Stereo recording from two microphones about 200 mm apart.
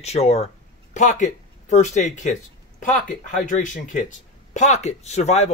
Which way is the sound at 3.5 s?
40° left (ahead or behind).